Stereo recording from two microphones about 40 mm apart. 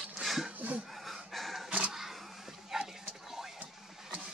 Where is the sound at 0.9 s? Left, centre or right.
Centre.